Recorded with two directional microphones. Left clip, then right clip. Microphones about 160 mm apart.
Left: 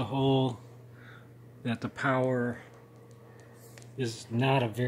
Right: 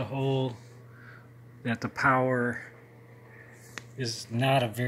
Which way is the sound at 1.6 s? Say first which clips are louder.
Right 5 dB; centre (ahead or behind).